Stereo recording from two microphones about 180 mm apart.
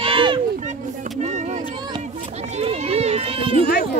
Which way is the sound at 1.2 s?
40° right (ahead or behind).